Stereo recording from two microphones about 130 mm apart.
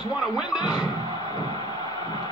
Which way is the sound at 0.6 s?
30° left (ahead or behind).